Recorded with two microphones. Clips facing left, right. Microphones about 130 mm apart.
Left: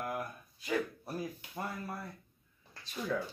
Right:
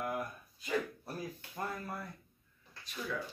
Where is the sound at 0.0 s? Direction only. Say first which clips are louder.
Right 1 dB; centre (ahead or behind).